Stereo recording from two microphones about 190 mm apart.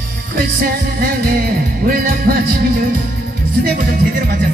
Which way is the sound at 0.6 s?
50° right (ahead or behind).